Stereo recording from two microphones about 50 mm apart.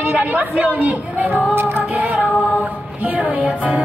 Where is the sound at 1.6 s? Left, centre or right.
Right.